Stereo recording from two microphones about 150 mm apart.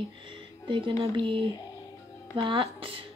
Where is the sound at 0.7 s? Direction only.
35° right (ahead or behind).